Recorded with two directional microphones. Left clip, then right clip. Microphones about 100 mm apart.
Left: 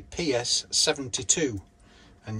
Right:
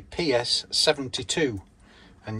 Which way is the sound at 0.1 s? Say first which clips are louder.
Right 3 dB; 25° left (ahead or behind).